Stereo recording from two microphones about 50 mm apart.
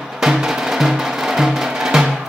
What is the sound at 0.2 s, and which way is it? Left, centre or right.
Music, centre.